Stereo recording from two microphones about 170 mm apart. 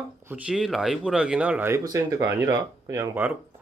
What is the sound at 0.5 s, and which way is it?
Speech, centre (ahead or behind).